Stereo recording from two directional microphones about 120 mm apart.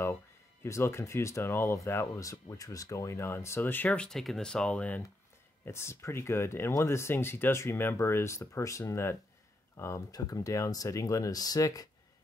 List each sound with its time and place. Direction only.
0.7 s speech: 20° left (ahead or behind)
5.7 s speech: 20° left (ahead or behind)